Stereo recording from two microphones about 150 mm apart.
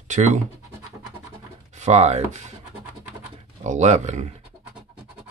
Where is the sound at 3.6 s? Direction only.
50° right (ahead or behind).